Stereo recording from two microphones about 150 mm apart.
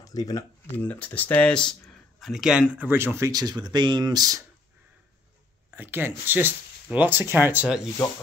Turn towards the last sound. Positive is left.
turn(degrees=-10)  # may be behind; listen again after turning